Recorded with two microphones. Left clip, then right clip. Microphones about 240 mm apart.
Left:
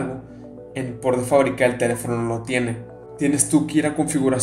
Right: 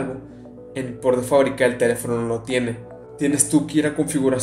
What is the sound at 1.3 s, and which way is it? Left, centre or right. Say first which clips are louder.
Speech: left 1 dB; centre.